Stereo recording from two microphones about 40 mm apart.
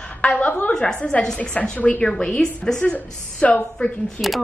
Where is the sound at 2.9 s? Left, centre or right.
Left.